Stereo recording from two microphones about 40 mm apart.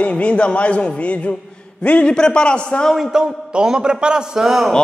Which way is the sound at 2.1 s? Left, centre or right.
Left.